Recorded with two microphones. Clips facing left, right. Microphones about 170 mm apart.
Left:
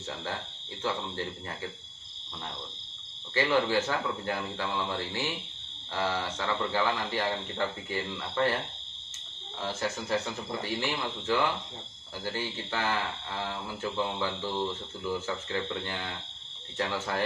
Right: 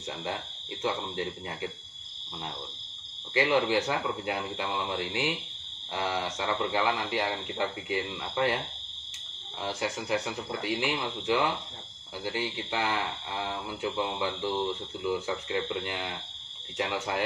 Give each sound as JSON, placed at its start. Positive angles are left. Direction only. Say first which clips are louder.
{"t": 0.8, "sound": "speech", "louder": "right 2 dB", "side_deg": -20}
{"t": 3.3, "sound": "speech", "louder": "right 1 dB", "side_deg": -15}
{"t": 9.6, "sound": "speech", "louder": "even", "side_deg": -15}
{"t": 13.9, "sound": "speech", "louder": "left 2 dB", "side_deg": -15}